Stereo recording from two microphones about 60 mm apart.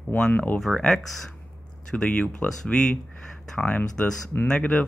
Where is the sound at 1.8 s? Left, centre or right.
Centre.